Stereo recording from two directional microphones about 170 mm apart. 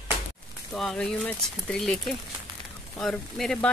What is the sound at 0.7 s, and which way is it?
Speech, centre (ahead or behind).